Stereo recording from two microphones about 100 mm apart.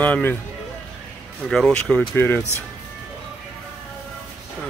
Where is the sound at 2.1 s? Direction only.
20° left (ahead or behind).